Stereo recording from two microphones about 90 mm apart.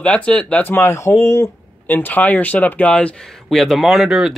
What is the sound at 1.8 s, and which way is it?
Speech, 20° left (ahead or behind).